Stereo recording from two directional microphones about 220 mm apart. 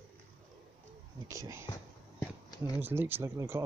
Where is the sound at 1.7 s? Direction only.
15° left (ahead or behind).